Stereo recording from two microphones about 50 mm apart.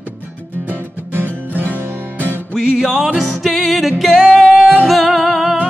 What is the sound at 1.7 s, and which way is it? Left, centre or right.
Music, left.